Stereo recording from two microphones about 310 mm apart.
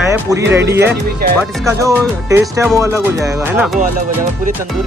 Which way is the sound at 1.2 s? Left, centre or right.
Right.